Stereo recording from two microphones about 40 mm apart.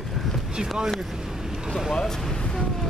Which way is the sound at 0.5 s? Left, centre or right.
Centre.